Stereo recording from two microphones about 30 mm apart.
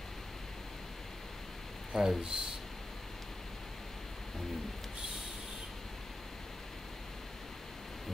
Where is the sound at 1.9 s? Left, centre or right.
Centre.